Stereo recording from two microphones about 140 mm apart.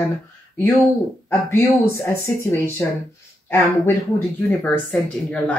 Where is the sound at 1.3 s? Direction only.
15° left (ahead or behind).